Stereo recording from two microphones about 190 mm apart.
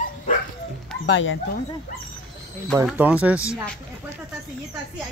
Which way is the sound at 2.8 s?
5° right (ahead or behind).